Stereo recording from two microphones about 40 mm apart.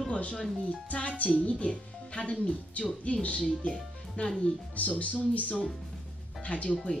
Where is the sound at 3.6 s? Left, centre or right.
Left.